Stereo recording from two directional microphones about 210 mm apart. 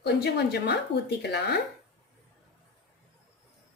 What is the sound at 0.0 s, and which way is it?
A woman's voice, 50° left (ahead or behind).